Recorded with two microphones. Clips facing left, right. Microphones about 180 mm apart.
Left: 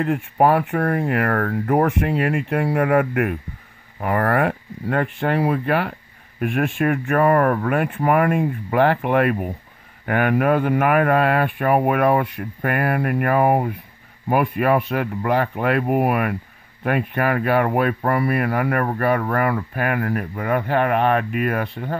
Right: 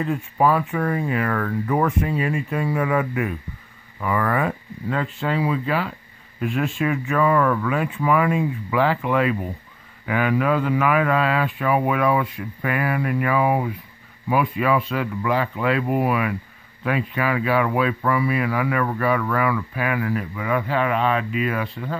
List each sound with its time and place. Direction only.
0.0 s speech: 65° left (ahead or behind)